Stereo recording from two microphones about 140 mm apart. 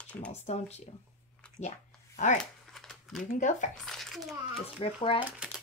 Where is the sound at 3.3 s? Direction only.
65° left (ahead or behind).